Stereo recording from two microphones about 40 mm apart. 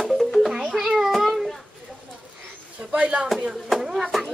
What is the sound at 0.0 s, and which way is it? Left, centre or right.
Music, centre.